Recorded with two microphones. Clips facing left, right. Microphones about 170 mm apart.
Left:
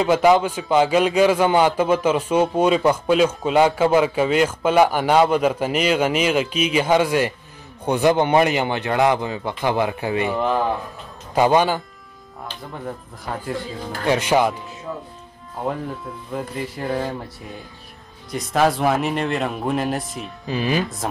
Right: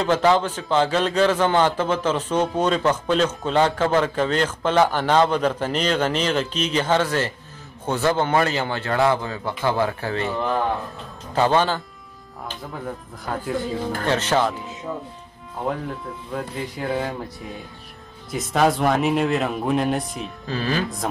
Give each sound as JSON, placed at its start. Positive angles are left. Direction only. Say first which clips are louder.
{"t": 0.0, "sound": "a man's voice", "louder": "left 3 dB", "side_deg": 10}
{"t": 12.8, "sound": "speech", "louder": "left 1 dB", "side_deg": 0}
{"t": 14.0, "sound": "a man's voice", "louder": "left 4 dB", "side_deg": 10}
{"t": 15.6, "sound": "speech", "louder": "left 1 dB", "side_deg": 5}
{"t": 18.3, "sound": "speech", "louder": "left 1 dB", "side_deg": 0}
{"t": 20.4, "sound": "a man's voice", "louder": "left 3 dB", "side_deg": 15}
{"t": 21.0, "sound": "speech", "louder": "even", "side_deg": 0}